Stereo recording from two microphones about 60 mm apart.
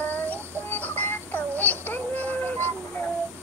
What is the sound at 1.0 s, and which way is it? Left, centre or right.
Music, left.